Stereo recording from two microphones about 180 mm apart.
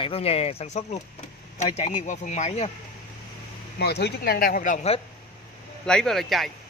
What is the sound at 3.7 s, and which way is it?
Speech, 65° left (ahead or behind).